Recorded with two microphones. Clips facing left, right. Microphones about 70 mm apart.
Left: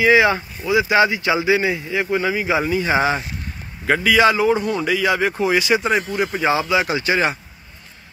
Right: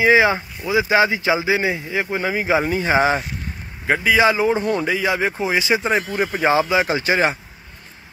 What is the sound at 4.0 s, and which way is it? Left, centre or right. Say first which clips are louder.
Speech: left 1 dB; centre.